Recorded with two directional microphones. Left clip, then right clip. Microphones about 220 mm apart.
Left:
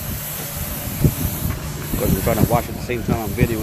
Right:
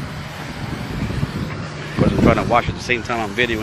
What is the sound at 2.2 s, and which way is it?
Speech, 10° left (ahead or behind).